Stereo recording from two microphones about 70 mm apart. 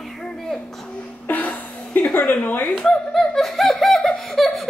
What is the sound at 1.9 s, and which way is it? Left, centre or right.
Speech, left.